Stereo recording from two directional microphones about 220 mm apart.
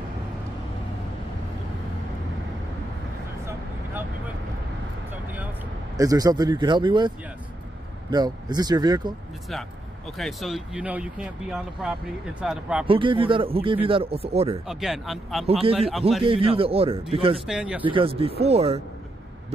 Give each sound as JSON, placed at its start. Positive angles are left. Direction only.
{"t": 5.9, "sound": "speech", "side_deg": -15}
{"t": 10.1, "sound": "speech", "side_deg": 0}
{"t": 12.8, "sound": "speech", "side_deg": -25}
{"t": 14.7, "sound": "speech", "side_deg": 0}
{"t": 16.3, "sound": "speech", "side_deg": -25}
{"t": 17.5, "sound": "speech", "side_deg": -5}
{"t": 17.8, "sound": "speech", "side_deg": -25}